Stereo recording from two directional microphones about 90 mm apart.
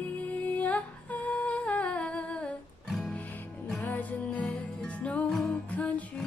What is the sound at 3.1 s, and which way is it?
Music, 15° left (ahead or behind).